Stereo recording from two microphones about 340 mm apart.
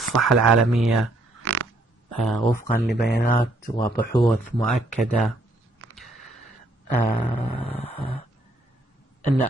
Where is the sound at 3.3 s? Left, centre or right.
Centre.